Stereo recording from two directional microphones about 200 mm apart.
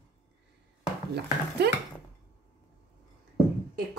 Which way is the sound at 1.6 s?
55° right (ahead or behind).